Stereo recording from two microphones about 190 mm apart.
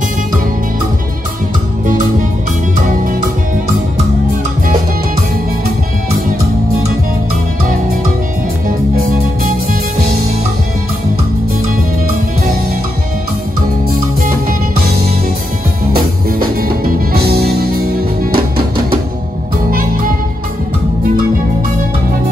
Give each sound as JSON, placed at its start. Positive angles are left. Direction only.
{"t": 1.9, "sound": "music", "side_deg": -45}
{"t": 8.6, "sound": "music", "side_deg": -50}
{"t": 15.9, "sound": "music", "side_deg": -50}
{"t": 19.7, "sound": "music", "side_deg": -45}